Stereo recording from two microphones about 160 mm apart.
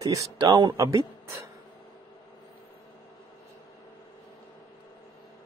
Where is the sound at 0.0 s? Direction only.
20° right (ahead or behind).